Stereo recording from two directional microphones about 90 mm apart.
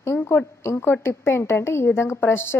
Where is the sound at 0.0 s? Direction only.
30° left (ahead or behind).